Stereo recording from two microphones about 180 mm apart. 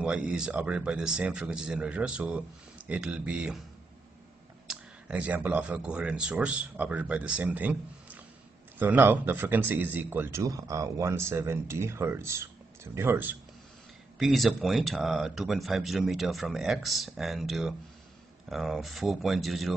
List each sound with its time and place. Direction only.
0.0 s speech: 5° right (ahead or behind)
4.6 s speech: 5° right (ahead or behind)
14.1 s speech: centre (ahead or behind)